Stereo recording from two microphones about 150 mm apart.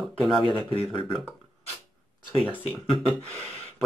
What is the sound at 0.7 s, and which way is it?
Speech, 35° left (ahead or behind).